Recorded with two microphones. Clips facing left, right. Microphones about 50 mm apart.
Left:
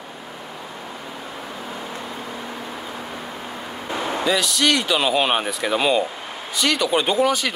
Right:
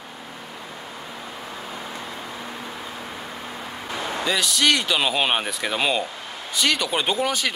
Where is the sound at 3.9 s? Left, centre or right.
Centre.